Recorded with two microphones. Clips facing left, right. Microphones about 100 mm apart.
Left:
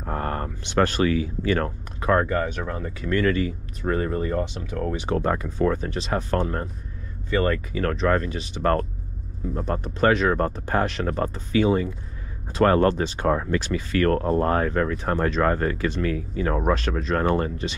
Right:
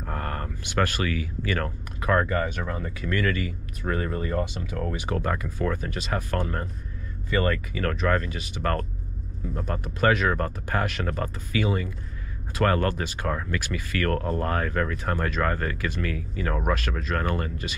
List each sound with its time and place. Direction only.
0.0 s speech: 25° left (ahead or behind)
2.3 s speech: centre (ahead or behind)
3.1 s speech: 25° left (ahead or behind)
3.8 s speech: 10° left (ahead or behind)
5.0 s speech: 30° left (ahead or behind)
10.1 s speech: 25° left (ahead or behind)